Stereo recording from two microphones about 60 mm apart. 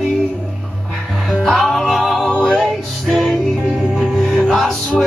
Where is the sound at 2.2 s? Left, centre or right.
Centre.